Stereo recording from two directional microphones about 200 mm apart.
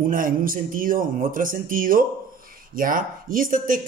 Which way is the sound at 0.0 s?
45° right (ahead or behind).